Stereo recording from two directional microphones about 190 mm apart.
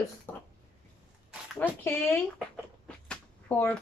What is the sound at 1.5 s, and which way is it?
Speech, 10° left (ahead or behind).